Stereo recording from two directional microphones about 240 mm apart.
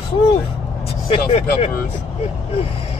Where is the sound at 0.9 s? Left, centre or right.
Left.